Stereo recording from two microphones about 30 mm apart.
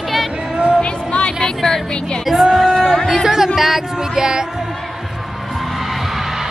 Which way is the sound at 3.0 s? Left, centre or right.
Centre.